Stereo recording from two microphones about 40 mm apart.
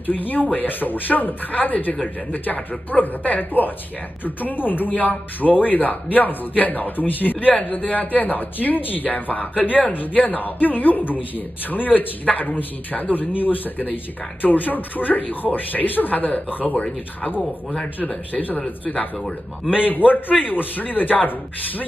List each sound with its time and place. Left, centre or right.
0.0 s speech: left
16.7 s speech: left
18.3 s speech: left
19.8 s speech: left